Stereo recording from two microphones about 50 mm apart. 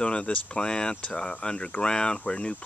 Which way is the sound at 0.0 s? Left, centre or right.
Left.